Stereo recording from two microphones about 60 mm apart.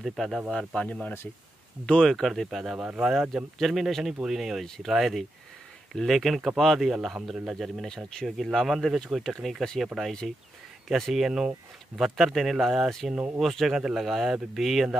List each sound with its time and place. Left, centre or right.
0.0 s speech: centre
0.5 s a man's voice: centre
7.9 s speech: centre